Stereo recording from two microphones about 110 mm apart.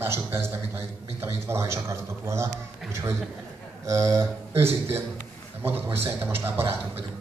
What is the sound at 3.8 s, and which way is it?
A man's voice, 30° right (ahead or behind).